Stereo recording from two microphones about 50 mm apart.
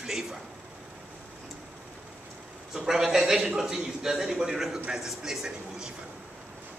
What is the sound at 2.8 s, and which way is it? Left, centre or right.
A man's voice, centre.